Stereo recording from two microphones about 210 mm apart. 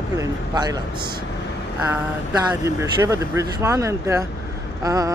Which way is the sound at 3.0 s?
15° right (ahead or behind).